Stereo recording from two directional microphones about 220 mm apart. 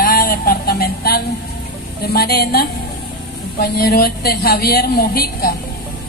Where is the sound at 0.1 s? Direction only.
40° left (ahead or behind).